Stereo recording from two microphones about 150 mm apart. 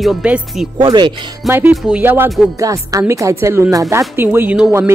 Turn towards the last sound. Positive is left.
turn(degrees=-20)  # may be behind; listen again after turning